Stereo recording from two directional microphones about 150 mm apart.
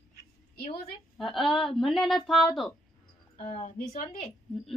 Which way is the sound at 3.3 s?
40° left (ahead or behind).